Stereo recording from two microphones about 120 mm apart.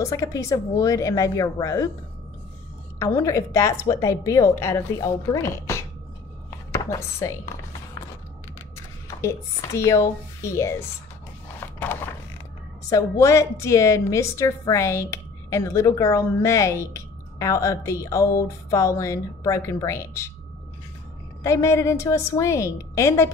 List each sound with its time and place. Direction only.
0.0 s a woman's voice: 25° left (ahead or behind)
3.0 s a woman's voice: 25° left (ahead or behind)
6.7 s chopping: 25° left (ahead or behind)
9.0 s a woman's voice: 25° left (ahead or behind)
11.6 s a sound: 20° left (ahead or behind)
12.9 s a woman's voice: 25° left (ahead or behind)
21.4 s a woman's voice: 25° left (ahead or behind)